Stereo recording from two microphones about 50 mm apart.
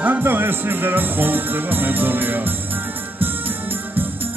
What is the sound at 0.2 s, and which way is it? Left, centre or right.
Music, right.